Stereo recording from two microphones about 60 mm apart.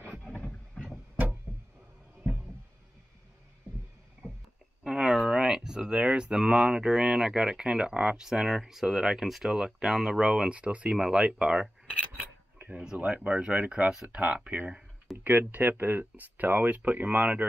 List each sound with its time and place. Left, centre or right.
0.2 s boat: left
4.8 s speech: centre
12.7 s speech: centre